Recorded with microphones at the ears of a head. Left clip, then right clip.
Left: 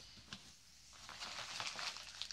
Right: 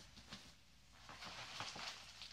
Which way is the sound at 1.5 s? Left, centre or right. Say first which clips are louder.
Left 4 dB; left.